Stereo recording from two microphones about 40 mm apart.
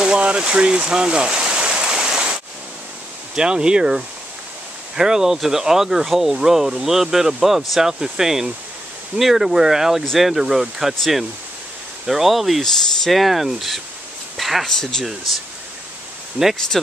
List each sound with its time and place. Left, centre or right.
0.0 s stream: right
3.3 s speech: right
12.1 s speech: centre
14.3 s a sound: centre
14.7 s speech: centre
16.4 s speech: right
16.7 s speech: centre